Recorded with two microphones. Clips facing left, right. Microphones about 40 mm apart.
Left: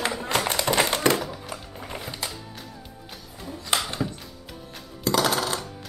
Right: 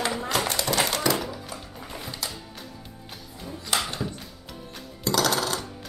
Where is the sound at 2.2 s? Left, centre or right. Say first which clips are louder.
Left 1 dB; left.